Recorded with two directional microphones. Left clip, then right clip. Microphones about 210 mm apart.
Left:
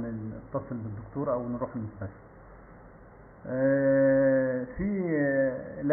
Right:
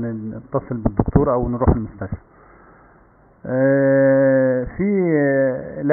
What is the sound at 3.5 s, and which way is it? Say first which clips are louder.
Sheep: right 9 dB; 45° right (ahead or behind).